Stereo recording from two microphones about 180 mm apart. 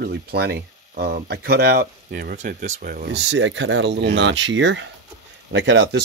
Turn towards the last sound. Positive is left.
turn(degrees=-75)  # may be behind; listen again after turning